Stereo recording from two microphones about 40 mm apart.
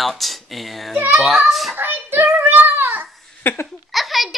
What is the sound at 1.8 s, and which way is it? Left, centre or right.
Child singing, right.